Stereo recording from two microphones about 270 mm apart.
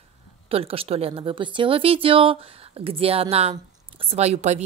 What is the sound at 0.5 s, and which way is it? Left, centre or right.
A woman's voice, right.